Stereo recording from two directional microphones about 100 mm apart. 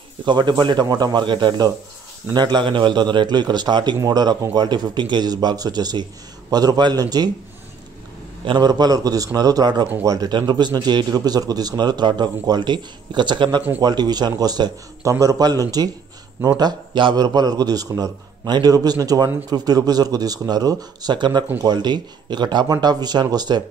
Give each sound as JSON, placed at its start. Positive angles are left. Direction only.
{"t": 0.2, "sound": "a man's voice", "side_deg": -50}
{"t": 8.5, "sound": "a man's voice", "side_deg": -45}